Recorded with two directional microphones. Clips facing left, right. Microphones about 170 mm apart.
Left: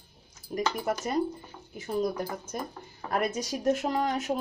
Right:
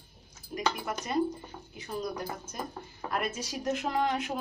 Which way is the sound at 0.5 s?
40° left (ahead or behind).